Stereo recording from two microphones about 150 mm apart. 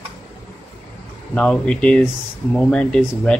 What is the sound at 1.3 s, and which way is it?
Speech, 5° left (ahead or behind).